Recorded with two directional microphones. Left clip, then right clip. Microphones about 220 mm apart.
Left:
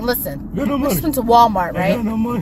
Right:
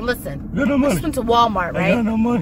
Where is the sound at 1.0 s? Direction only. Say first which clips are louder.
Left 8 dB; 5° left (ahead or behind).